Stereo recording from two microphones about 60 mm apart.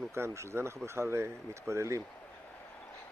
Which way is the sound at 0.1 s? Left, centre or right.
Right.